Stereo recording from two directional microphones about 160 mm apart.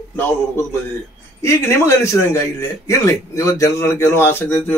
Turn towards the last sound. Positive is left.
turn(degrees=15)  # may be behind; listen again after turning